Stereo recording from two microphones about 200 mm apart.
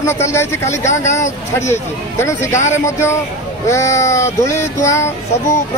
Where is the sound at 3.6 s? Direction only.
15° left (ahead or behind).